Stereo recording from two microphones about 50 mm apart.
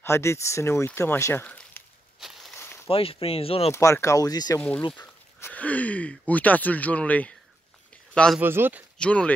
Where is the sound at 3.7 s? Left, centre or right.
Left.